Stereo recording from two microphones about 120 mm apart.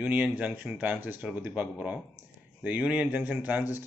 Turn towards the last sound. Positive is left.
turn(degrees=-15)  # may be behind; listen again after turning